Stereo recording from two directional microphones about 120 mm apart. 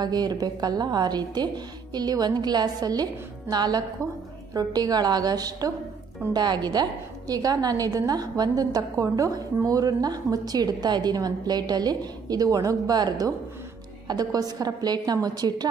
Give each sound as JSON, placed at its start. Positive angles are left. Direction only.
{"t": 0.0, "sound": "a woman's voice", "side_deg": -35}